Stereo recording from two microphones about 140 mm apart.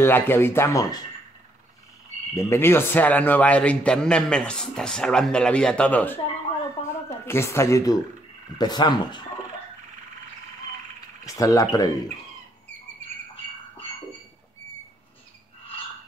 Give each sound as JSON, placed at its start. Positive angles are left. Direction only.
{"t": 0.0, "sound": "speech", "side_deg": 15}
{"t": 2.3, "sound": "speech", "side_deg": 15}
{"t": 11.2, "sound": "speech", "side_deg": 25}